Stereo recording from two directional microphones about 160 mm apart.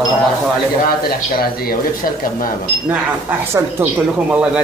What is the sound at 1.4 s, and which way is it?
Speech, 70° left (ahead or behind).